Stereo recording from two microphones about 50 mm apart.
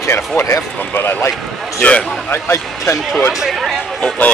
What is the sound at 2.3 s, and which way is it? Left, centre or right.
Speech, left.